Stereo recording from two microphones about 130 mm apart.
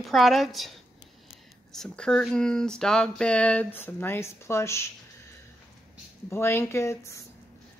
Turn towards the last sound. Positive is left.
turn(degrees=20)  # may be behind; listen again after turning